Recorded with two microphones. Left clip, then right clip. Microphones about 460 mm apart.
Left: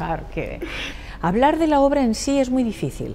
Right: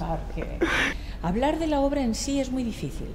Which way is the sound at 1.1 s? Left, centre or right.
Left.